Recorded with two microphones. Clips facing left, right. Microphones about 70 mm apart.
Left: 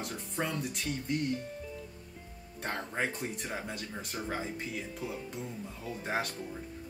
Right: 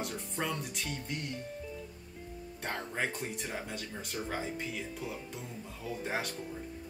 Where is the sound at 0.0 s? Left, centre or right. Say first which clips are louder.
Left 1 dB; centre.